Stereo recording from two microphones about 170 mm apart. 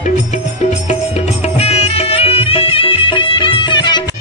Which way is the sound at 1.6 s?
35° left (ahead or behind).